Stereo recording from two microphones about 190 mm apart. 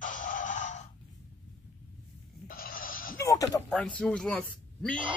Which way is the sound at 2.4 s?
50° left (ahead or behind).